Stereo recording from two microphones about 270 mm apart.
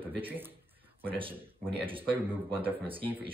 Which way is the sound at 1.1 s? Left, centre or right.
Centre.